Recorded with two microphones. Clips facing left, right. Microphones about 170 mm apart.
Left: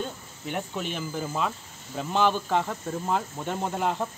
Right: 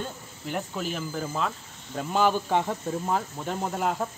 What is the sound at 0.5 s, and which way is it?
Speech, centre (ahead or behind).